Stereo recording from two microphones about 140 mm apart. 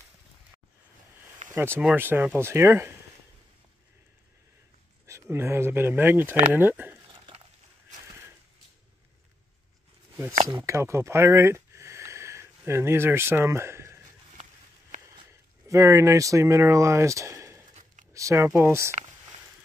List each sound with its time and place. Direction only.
1.5 s speech: 15° right (ahead or behind)
5.0 s speech: 20° right (ahead or behind)
10.6 s speech: 20° right (ahead or behind)
14.3 s a sound: 50° right (ahead or behind)
15.7 s speech: 20° right (ahead or behind)